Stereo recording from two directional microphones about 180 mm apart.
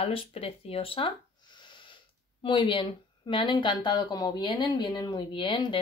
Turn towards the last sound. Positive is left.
turn(degrees=25)  # may be behind; listen again after turning